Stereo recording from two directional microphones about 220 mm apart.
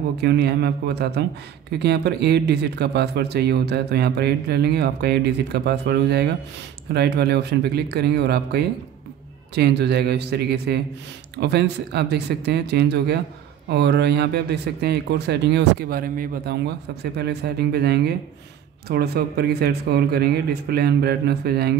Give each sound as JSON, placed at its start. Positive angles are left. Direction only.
{"t": 0.2, "sound": "speech", "side_deg": -50}